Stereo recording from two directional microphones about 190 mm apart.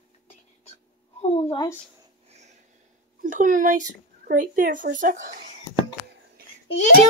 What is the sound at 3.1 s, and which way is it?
Speech, 45° right (ahead or behind).